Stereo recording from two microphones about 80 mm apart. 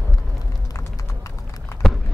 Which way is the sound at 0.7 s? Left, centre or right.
Left.